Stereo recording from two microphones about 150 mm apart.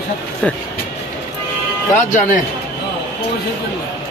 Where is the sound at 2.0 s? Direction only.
55° left (ahead or behind).